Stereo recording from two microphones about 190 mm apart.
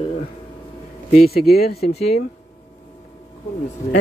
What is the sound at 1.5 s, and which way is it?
Speech, 55° left (ahead or behind).